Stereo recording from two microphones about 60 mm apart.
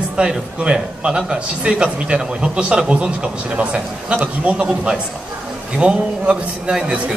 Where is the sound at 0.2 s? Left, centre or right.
Centre.